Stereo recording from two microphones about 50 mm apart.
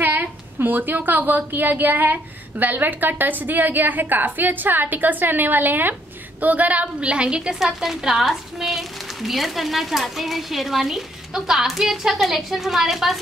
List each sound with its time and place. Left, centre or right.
0.0 s a woman's voice: right; by 7.5 s centre
7.5 s a woman's voice: centre